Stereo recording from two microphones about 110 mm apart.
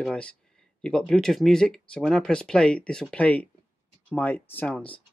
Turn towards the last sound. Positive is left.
turn(degrees=15)  # may be behind; listen again after turning